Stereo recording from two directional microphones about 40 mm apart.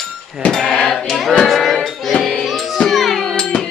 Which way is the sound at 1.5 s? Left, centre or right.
Centre.